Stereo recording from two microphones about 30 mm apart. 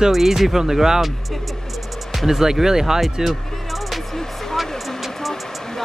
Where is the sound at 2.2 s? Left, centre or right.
Centre.